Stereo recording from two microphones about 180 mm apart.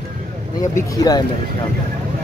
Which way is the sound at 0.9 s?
20° left (ahead or behind).